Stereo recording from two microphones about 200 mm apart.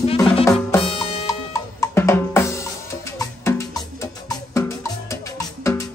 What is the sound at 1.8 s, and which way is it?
Drum, 10° left (ahead or behind).